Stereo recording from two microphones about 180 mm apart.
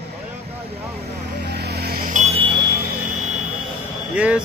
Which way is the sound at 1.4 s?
65° right (ahead or behind).